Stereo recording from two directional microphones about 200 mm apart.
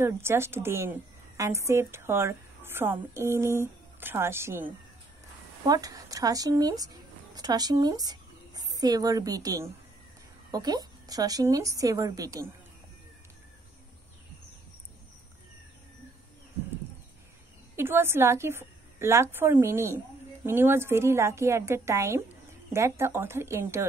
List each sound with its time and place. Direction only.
0.0 s a woman's voice: 10° right (ahead or behind)
17.7 s a woman's voice: 10° right (ahead or behind)